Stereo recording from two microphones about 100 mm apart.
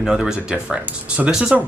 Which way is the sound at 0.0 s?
5° right (ahead or behind).